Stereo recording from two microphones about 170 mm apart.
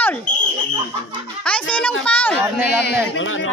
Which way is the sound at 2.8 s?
70° left (ahead or behind).